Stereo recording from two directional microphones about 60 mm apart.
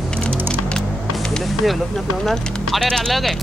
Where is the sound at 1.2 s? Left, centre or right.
Centre.